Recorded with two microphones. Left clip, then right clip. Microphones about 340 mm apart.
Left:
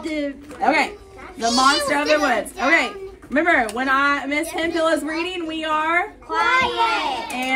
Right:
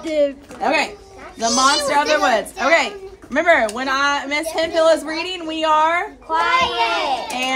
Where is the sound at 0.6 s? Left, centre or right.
Centre.